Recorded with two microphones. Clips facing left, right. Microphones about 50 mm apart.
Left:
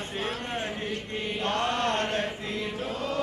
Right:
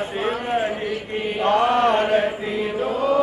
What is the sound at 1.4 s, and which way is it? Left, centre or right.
Mantra, centre.